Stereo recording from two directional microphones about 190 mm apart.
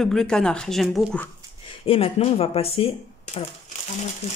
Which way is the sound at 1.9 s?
30° left (ahead or behind).